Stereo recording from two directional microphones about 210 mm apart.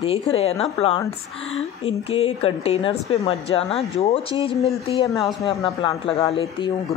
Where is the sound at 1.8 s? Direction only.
25° left (ahead or behind).